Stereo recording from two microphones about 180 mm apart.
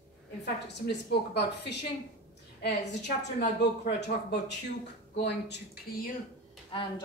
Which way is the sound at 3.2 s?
70° left (ahead or behind).